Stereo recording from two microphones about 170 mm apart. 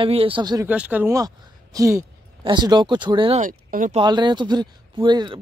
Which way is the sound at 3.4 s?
55° right (ahead or behind).